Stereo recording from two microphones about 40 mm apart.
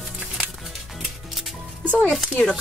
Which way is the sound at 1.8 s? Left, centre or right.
Left.